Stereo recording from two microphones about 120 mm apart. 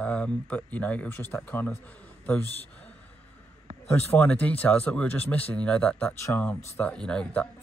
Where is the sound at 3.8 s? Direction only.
20° left (ahead or behind).